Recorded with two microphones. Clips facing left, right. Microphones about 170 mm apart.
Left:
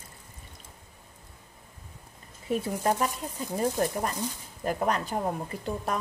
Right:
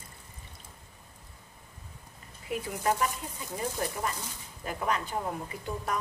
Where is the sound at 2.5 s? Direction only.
35° left (ahead or behind).